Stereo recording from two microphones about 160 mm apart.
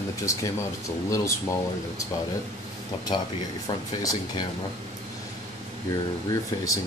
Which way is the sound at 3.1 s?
30° left (ahead or behind).